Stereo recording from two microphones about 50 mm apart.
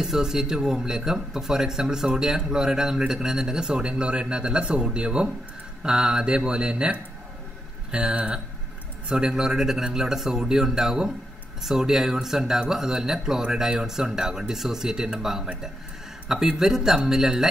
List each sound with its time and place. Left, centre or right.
0.0 s speech: centre